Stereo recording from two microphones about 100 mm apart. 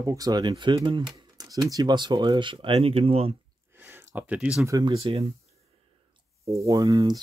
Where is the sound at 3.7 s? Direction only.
20° right (ahead or behind).